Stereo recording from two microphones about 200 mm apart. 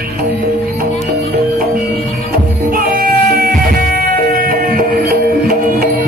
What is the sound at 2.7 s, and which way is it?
Music, 45° right (ahead or behind).